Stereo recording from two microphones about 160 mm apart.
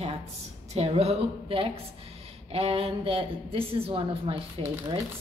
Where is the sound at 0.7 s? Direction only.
40° right (ahead or behind).